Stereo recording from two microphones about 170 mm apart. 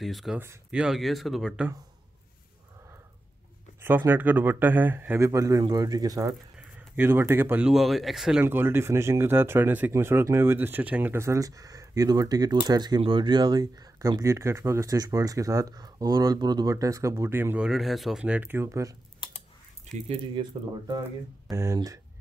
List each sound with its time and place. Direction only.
0.0 s speech: centre (ahead or behind)
3.8 s speech: 10° right (ahead or behind)
20.4 s speech: 30° right (ahead or behind)